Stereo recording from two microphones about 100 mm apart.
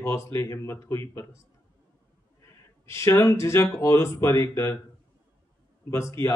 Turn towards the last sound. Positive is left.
turn(degrees=25)  # may be behind; listen again after turning